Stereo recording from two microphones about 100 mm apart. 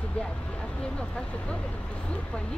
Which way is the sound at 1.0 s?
10° left (ahead or behind).